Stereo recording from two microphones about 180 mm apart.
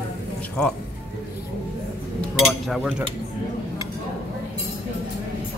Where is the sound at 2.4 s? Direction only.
Centre (ahead or behind).